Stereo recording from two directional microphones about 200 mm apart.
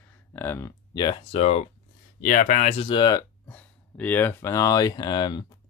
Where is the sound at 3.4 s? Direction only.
10° left (ahead or behind).